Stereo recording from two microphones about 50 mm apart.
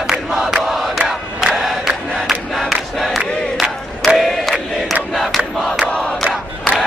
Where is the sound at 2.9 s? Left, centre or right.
Centre.